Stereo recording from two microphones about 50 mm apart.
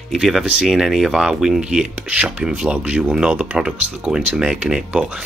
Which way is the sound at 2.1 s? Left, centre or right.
Right.